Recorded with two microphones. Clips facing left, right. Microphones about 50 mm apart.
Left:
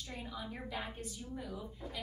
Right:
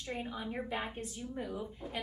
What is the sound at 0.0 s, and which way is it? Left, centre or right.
A woman's voice, right.